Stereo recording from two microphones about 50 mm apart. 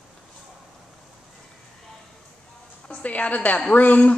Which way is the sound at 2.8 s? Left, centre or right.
Left.